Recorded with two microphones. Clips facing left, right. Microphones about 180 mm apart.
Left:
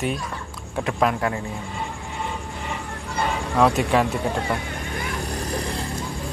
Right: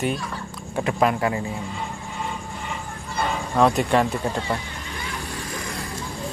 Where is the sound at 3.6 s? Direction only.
Centre (ahead or behind).